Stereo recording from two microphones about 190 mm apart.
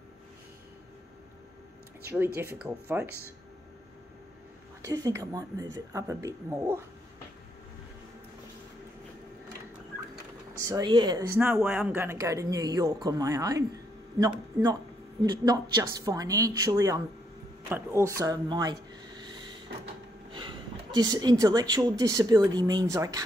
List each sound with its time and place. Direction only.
2.0 s speech: 10° right (ahead or behind)
4.8 s speech: 15° right (ahead or behind)
10.7 s a woman's voice: 20° right (ahead or behind)
11.5 s a woman's voice: 5° right (ahead or behind)